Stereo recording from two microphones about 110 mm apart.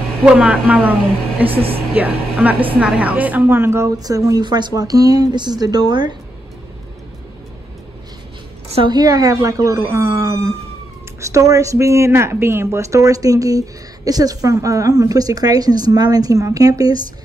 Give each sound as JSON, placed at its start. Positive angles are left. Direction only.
{"t": 0.2, "sound": "speech", "side_deg": -10}
{"t": 8.8, "sound": "speech", "side_deg": -35}